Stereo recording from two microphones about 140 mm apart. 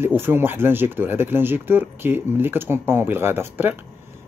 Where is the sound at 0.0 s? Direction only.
15° right (ahead or behind).